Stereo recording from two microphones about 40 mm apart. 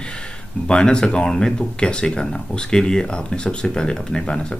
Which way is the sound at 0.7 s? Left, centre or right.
Left.